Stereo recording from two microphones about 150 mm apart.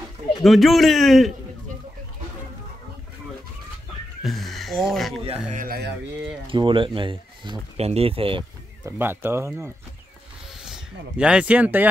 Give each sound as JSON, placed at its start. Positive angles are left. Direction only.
{"t": 0.4, "sound": "a man's voice", "side_deg": 0}
{"t": 4.2, "sound": "speech", "side_deg": 0}
{"t": 5.5, "sound": "speech", "side_deg": -70}
{"t": 6.4, "sound": "speech", "side_deg": -35}
{"t": 8.8, "sound": "speech", "side_deg": -15}
{"t": 10.6, "sound": "speech", "side_deg": -5}